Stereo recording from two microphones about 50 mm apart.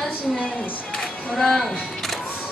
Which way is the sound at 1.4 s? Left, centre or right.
Centre.